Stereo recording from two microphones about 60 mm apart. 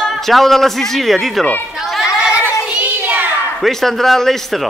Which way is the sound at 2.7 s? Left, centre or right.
Right.